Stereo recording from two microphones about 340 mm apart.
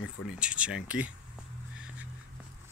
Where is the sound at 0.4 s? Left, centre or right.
Centre.